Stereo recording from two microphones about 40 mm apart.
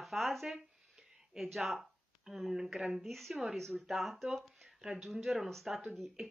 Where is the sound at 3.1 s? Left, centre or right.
Centre.